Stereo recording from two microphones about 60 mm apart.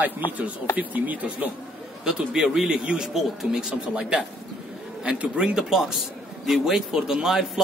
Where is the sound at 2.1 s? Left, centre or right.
Centre.